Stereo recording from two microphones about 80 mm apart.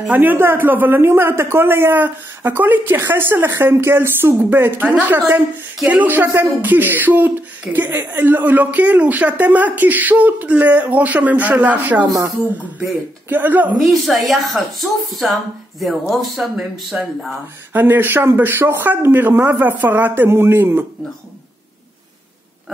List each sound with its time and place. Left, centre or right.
0.1 s speech: right
13.3 s speech: right
13.8 s speech: centre
17.7 s speech: right